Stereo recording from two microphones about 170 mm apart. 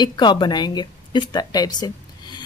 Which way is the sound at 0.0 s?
25° left (ahead or behind).